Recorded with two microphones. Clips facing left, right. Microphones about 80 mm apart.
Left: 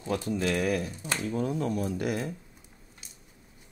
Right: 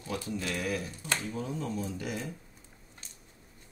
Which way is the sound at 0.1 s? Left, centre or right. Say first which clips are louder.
Left 6 dB; left.